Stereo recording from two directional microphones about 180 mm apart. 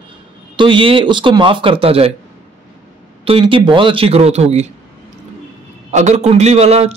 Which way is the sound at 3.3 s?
30° right (ahead or behind).